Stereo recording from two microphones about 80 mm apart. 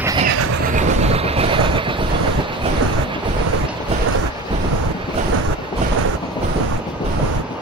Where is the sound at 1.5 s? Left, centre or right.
Right.